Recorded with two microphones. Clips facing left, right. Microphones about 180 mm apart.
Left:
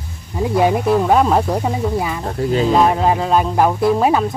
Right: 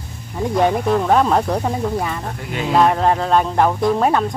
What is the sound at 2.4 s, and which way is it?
Speech, 35° left (ahead or behind).